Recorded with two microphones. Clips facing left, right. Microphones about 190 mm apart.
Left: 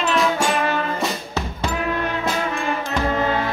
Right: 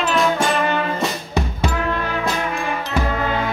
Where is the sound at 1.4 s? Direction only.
15° right (ahead or behind).